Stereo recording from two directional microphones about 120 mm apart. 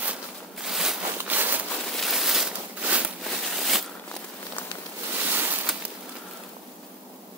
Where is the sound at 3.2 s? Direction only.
Centre (ahead or behind).